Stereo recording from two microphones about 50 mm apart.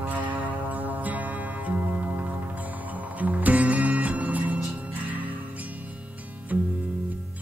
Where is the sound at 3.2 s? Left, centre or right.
Right.